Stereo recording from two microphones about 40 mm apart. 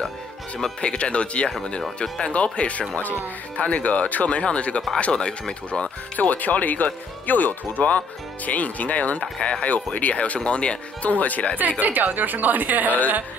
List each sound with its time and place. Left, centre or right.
0.7 s speech: left
3.0 s speech: left
6.1 s speech: left
9.4 s speech: left
9.9 s speech: left
11.1 s speech: left
11.8 s a woman's voice: right